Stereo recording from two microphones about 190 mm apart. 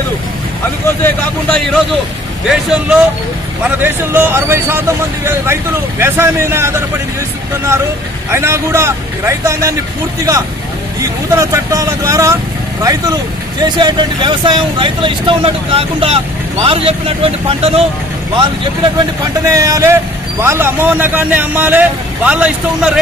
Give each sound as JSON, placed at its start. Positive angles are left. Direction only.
{"t": 0.8, "sound": "speech", "side_deg": 10}
{"t": 2.4, "sound": "a man's voice", "side_deg": -5}
{"t": 8.3, "sound": "a man's voice", "side_deg": -15}
{"t": 11.3, "sound": "a man's voice", "side_deg": -15}
{"t": 19.5, "sound": "a man's voice", "side_deg": -15}